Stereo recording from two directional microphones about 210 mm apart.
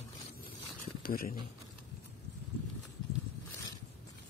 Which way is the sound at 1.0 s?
45° left (ahead or behind).